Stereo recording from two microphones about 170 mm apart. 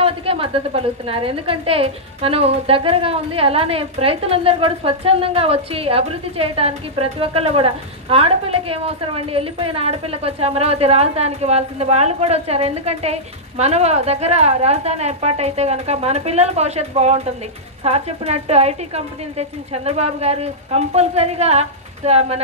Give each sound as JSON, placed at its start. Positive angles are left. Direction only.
{"t": 0.0, "sound": "a woman's voice", "side_deg": -35}